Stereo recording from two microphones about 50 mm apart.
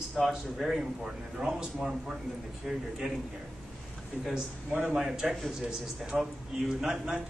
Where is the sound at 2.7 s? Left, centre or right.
Centre.